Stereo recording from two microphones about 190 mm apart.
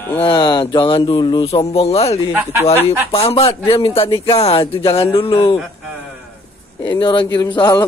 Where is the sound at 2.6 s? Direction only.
30° left (ahead or behind).